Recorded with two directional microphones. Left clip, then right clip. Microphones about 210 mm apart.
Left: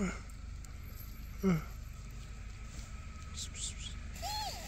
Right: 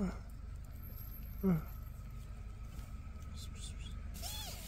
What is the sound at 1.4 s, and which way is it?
Speech, 5° left (ahead or behind).